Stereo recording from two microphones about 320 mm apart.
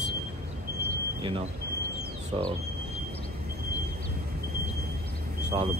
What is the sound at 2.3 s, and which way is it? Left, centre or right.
Speech, centre.